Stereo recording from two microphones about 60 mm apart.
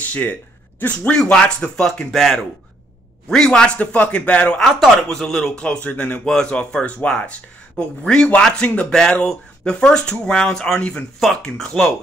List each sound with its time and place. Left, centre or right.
0.0 s speech: left
1.1 s speech: centre
2.1 s speech: centre
3.3 s speech: centre
3.7 s speech: left
4.6 s speech: centre
5.6 s speech: centre
11.1 s speech: centre